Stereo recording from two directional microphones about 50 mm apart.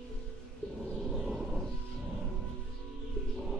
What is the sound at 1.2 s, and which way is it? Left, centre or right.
Music, centre.